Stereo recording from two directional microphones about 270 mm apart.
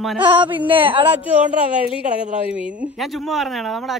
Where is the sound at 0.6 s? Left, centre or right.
Centre.